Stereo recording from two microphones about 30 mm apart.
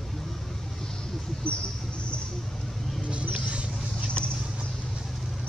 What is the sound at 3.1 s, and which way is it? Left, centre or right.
Mouse, right.